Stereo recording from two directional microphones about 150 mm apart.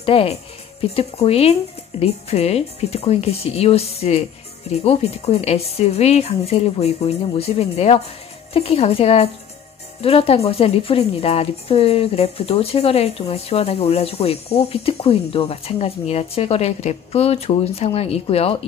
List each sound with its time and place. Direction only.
0.0 s a woman's voice: 40° left (ahead or behind)